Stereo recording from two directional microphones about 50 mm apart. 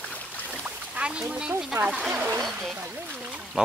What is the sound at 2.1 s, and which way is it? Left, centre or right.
Speech, right.